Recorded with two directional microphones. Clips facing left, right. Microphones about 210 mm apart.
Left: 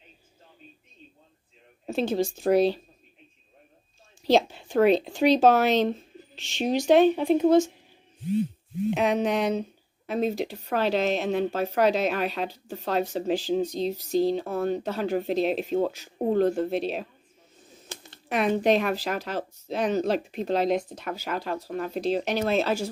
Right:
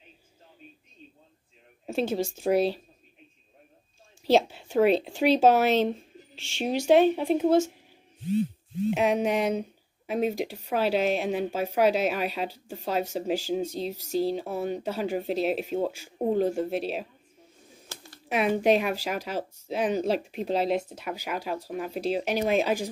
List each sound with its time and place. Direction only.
1.9 s speech: 10° right (ahead or behind)
4.3 s speech: 5° right (ahead or behind)
8.9 s speech: 10° right (ahead or behind)
17.8 s a sound: 20° left (ahead or behind)
18.3 s speech: 10° right (ahead or behind)